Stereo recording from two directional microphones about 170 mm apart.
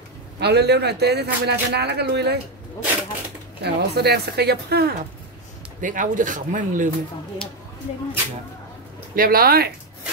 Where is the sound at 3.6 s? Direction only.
75° right (ahead or behind).